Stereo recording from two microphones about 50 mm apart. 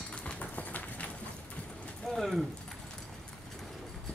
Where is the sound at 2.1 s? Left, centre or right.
Centre.